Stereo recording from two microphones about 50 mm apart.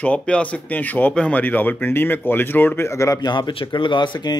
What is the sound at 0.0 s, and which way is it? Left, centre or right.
Speech, left.